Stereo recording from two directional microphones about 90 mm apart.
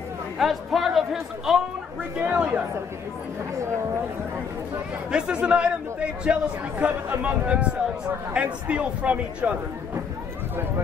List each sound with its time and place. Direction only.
0.4 s speech: centre (ahead or behind)
2.3 s a man's voice: 15° right (ahead or behind)
5.1 s a man's voice: 10° right (ahead or behind)